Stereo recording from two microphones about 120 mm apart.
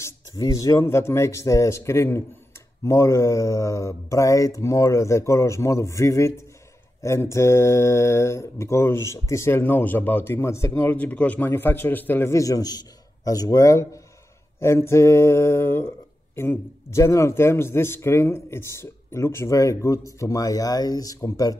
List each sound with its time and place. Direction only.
0.4 s speech: 30° left (ahead or behind)